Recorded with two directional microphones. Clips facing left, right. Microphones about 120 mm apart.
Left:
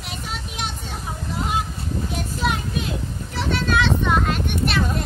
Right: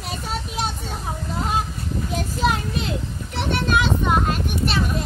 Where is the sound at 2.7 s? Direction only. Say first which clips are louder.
Right 1 dB; 65° right (ahead or behind).